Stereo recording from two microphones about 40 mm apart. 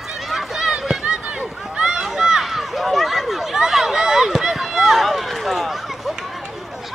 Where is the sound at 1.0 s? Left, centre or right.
Centre.